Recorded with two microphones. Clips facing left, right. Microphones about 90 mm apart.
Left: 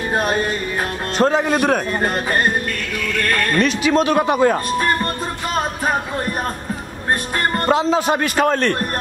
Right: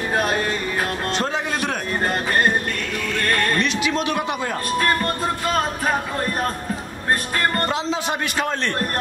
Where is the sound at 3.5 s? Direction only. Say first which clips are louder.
Left 5 dB; 40° left (ahead or behind).